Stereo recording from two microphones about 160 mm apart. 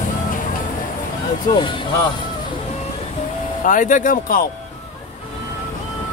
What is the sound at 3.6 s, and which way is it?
Speech, 55° left (ahead or behind).